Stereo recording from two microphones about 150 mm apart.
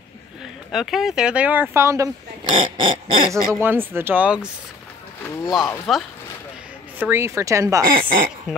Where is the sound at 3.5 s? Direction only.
15° right (ahead or behind).